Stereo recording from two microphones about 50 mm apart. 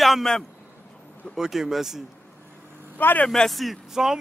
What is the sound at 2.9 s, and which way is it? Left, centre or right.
Speech, left.